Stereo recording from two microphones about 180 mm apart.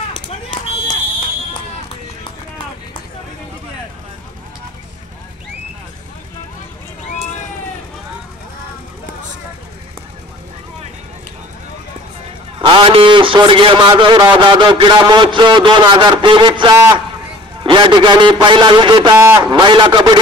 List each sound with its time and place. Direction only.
12.6 s a man's voice: 30° right (ahead or behind)